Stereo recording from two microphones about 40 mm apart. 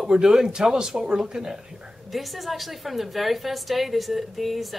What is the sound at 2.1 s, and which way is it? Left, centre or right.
A woman's voice, centre.